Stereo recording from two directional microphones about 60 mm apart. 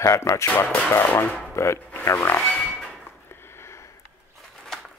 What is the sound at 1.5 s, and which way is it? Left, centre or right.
Speech, left.